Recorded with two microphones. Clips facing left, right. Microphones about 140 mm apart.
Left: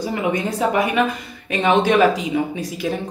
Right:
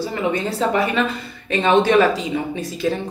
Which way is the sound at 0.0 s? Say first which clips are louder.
Even; 15° left (ahead or behind).